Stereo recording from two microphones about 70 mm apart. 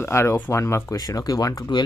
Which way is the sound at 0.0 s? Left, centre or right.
Left.